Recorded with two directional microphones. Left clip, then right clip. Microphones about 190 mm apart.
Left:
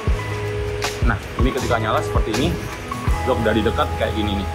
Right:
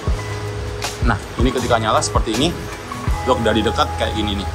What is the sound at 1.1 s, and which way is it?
Speech, 5° right (ahead or behind).